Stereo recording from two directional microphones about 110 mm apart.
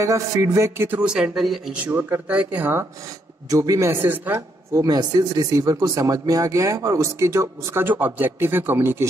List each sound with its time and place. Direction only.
0.0 s speech: 30° right (ahead or behind)
1.0 s speech: 5° right (ahead or behind)
1.9 s a man's voice: 20° right (ahead or behind)
3.4 s speech: 30° right (ahead or behind)
4.7 s speech: 35° right (ahead or behind); by 9.0 s 20° right (ahead or behind)